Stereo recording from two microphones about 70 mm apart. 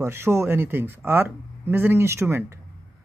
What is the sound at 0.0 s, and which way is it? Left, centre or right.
Speech, right.